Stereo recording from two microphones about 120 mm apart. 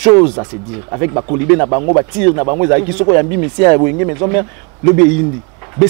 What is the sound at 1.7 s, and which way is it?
Speech, 30° right (ahead or behind).